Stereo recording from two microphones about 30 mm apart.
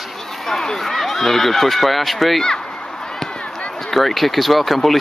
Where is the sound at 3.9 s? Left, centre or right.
Centre.